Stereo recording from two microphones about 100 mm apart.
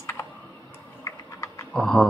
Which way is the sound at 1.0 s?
30° left (ahead or behind).